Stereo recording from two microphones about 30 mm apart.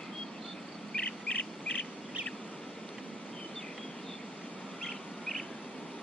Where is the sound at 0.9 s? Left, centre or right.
Left.